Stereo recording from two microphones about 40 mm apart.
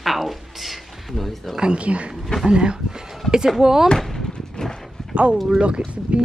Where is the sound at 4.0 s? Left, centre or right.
Centre.